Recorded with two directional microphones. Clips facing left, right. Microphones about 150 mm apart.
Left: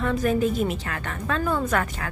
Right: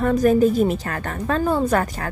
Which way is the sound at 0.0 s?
40° right (ahead or behind).